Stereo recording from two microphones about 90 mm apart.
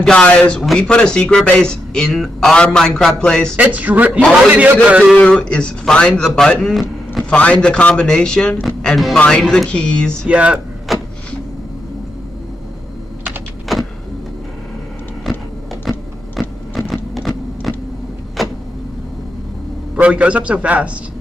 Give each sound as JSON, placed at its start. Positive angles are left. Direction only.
{"t": 0.0, "sound": "speech", "side_deg": 10}
{"t": 3.5, "sound": "a man's voice", "side_deg": -20}
{"t": 5.1, "sound": "speech", "side_deg": 10}
{"t": 7.3, "sound": "speech", "side_deg": 10}
{"t": 10.2, "sound": "a man's voice", "side_deg": -15}
{"t": 10.9, "sound": "vehicle", "side_deg": 0}
{"t": 13.7, "sound": "power windows", "side_deg": 0}
{"t": 15.8, "sound": "printer", "side_deg": 0}
{"t": 18.4, "sound": "vehicle", "side_deg": 0}
{"t": 20.0, "sound": "a man's voice", "side_deg": -15}